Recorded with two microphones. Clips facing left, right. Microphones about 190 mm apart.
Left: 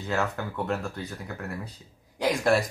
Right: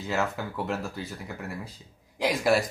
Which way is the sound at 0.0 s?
Centre (ahead or behind).